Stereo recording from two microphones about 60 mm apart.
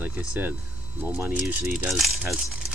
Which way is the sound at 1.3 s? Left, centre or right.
Right.